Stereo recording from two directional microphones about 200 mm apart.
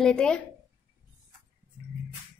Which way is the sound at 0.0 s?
5° left (ahead or behind).